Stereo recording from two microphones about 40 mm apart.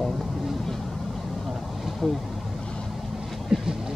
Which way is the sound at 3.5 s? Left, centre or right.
Right.